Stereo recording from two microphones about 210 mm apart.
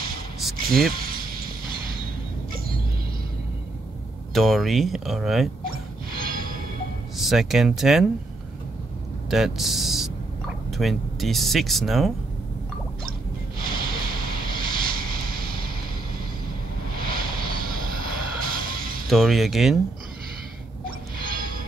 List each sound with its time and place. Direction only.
0.4 s speech: centre (ahead or behind)
0.9 s a sound: 45° right (ahead or behind)
4.3 s speech: centre (ahead or behind)
6.1 s music: 45° right (ahead or behind)
7.2 s speech: centre (ahead or behind)
9.3 s speech: centre (ahead or behind)
13.6 s a sound: 45° right (ahead or behind)
16.9 s vehicle: 45° right (ahead or behind)
19.0 s speech: centre (ahead or behind)
21.2 s music: 45° right (ahead or behind)